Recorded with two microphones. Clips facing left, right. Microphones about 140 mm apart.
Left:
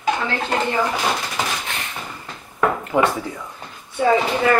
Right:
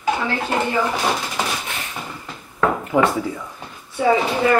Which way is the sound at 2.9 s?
20° left (ahead or behind).